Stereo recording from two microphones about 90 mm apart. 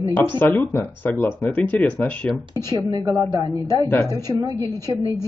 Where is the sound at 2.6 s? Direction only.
45° right (ahead or behind).